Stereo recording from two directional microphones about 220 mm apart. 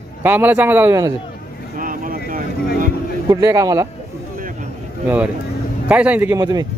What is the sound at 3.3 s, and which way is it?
Speech, 15° right (ahead or behind).